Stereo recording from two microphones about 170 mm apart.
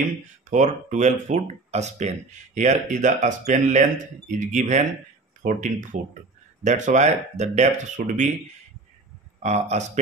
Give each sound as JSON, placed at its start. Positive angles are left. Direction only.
{"t": 0.5, "sound": "speech", "side_deg": -45}
{"t": 9.4, "sound": "speech", "side_deg": -40}